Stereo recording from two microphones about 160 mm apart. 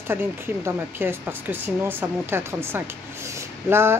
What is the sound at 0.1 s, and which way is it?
Speech, 15° right (ahead or behind).